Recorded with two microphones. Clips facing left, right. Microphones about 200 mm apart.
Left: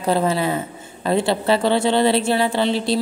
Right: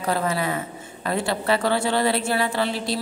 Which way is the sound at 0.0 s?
25° left (ahead or behind).